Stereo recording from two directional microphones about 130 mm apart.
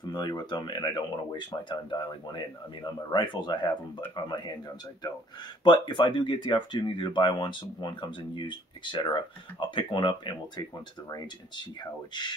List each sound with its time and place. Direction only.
0.1 s speech: 30° left (ahead or behind)
5.6 s speech: 35° left (ahead or behind)